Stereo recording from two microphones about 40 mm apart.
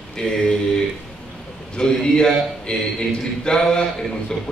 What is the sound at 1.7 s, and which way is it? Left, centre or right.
A man's voice, left.